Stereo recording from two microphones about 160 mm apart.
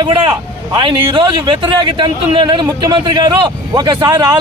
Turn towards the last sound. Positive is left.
turn(degrees=-20)  # may be behind; listen again after turning